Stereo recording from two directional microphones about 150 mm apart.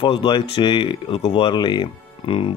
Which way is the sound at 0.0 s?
35° left (ahead or behind).